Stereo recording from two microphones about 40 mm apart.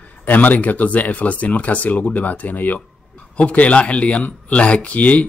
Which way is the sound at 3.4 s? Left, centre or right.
Left.